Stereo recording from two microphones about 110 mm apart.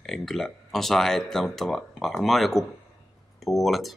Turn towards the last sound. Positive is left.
turn(degrees=0)  # may be behind; listen again after turning